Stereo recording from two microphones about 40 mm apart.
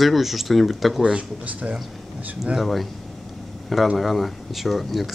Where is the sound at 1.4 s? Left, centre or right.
Right.